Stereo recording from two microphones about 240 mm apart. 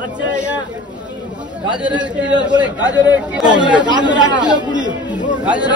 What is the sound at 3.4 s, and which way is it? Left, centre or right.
Speech, centre.